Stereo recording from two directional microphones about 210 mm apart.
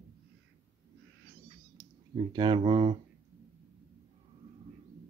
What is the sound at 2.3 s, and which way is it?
Speech, 25° right (ahead or behind).